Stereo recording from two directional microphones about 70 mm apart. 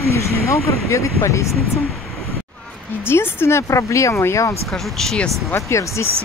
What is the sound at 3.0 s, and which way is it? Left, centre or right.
Speech, left.